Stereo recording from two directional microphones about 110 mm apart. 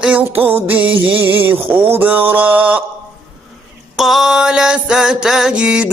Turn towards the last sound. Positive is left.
turn(degrees=-10)  # may be behind; listen again after turning